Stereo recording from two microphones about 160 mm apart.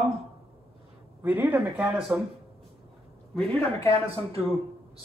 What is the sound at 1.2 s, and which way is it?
Speech, 10° right (ahead or behind).